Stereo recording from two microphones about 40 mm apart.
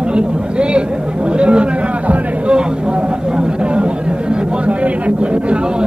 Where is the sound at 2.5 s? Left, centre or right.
Right.